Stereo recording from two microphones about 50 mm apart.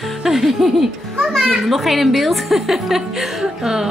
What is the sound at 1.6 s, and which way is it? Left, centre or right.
A woman's voice, centre.